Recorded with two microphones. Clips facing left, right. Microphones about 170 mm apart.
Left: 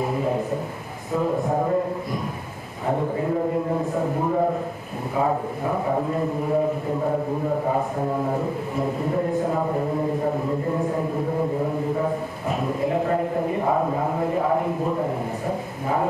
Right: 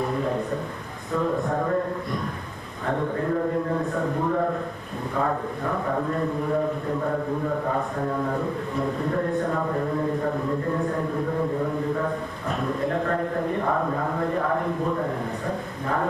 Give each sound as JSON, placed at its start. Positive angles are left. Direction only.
{"t": 0.0, "sound": "a sound", "side_deg": 5}
{"t": 1.5, "sound": "a man's voice", "side_deg": 20}
{"t": 2.9, "sound": "a man's voice", "side_deg": 10}
{"t": 8.7, "sound": "a man's voice", "side_deg": 5}
{"t": 9.5, "sound": "a man's voice", "side_deg": 20}
{"t": 12.4, "sound": "a man's voice", "side_deg": 5}
{"t": 13.7, "sound": "a man's voice", "side_deg": 20}